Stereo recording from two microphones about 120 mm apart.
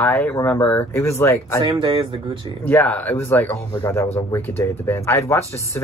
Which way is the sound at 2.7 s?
10° left (ahead or behind).